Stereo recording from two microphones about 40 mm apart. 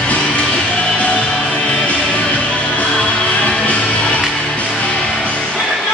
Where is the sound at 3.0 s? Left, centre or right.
Left.